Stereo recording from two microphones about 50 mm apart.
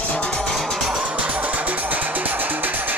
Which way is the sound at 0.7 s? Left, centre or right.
Centre.